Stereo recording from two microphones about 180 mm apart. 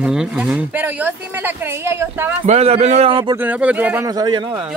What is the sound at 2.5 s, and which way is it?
Speech, 35° right (ahead or behind).